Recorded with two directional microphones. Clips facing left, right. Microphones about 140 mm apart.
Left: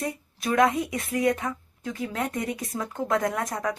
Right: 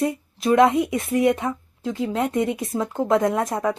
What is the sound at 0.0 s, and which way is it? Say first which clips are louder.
A woman's voice: right 8 dB; 25° right (ahead or behind).